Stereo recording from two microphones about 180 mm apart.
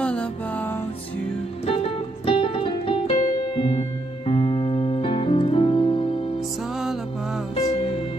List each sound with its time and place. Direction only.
0.0 s music: 5° left (ahead or behind)
1.7 s music: 30° left (ahead or behind)